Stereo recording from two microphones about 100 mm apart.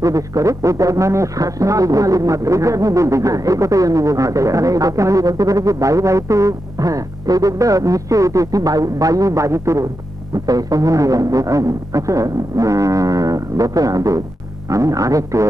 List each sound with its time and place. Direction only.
0.0 s speech: 35° right (ahead or behind)